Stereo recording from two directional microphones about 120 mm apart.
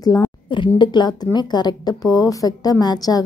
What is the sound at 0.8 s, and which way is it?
Speech, 40° left (ahead or behind).